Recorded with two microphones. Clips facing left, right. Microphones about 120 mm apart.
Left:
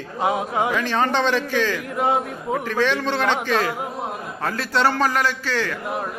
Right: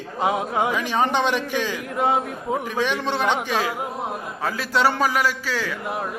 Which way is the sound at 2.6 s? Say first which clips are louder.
Left 5 dB; 10° right (ahead or behind).